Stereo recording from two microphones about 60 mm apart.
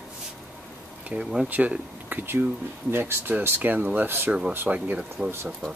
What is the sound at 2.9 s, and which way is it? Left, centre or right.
Speech, right.